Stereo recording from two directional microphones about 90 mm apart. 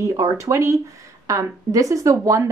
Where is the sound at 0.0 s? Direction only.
35° right (ahead or behind).